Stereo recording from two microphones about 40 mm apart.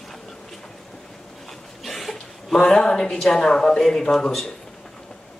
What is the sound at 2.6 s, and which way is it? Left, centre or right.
Speech, centre.